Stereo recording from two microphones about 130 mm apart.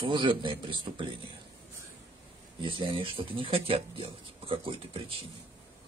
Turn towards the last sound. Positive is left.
turn(degrees=-45)  # may be behind; listen again after turning